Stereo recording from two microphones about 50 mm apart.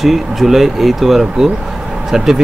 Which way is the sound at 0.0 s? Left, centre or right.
Centre.